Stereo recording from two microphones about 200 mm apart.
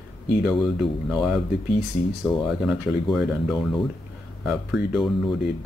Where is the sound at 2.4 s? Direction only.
Centre (ahead or behind).